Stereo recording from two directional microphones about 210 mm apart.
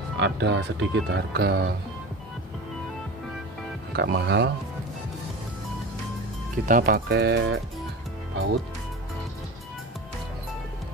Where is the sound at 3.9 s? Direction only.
55° right (ahead or behind).